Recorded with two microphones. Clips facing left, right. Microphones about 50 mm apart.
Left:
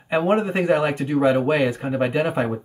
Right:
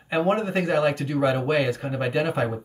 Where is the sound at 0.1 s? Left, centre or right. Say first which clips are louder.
Left 3 dB; left.